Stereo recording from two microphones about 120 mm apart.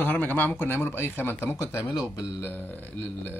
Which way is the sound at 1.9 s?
35° left (ahead or behind).